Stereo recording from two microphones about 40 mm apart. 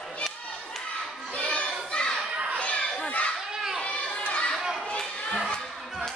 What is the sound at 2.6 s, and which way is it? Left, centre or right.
Children playing, left.